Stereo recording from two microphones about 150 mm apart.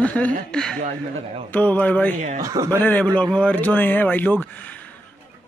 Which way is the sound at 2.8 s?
10° left (ahead or behind).